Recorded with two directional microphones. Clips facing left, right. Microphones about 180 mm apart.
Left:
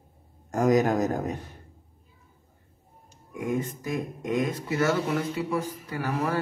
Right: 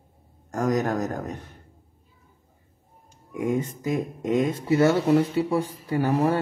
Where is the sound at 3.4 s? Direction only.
20° right (ahead or behind).